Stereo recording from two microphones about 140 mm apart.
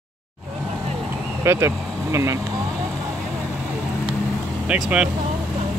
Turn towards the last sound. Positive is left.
turn(degrees=-5)  # may be behind; listen again after turning